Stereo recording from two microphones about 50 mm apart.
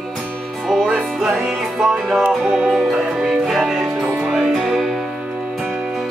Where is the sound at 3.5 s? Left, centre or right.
Centre.